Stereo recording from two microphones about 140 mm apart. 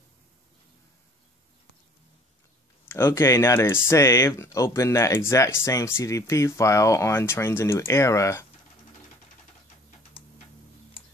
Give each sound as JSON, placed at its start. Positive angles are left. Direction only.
{"t": 2.8, "sound": "speech", "side_deg": 15}